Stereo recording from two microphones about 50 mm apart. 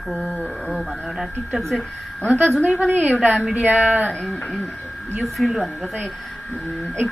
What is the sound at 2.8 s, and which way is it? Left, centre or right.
Speech, right.